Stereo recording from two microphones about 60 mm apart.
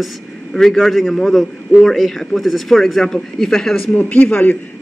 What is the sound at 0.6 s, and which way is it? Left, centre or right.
Speech, centre.